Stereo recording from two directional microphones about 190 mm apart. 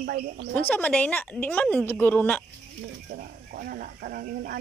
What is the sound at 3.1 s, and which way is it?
Speech, 50° right (ahead or behind).